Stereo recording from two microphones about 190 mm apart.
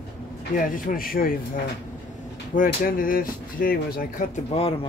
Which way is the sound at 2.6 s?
50° left (ahead or behind).